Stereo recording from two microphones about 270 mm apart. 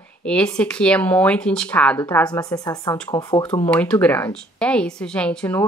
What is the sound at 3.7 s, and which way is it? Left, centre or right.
A woman's voice, centre.